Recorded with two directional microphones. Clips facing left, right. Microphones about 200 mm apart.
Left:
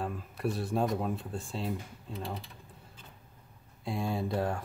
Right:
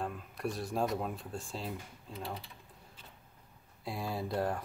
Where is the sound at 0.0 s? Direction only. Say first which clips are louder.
Left 3 dB; centre (ahead or behind).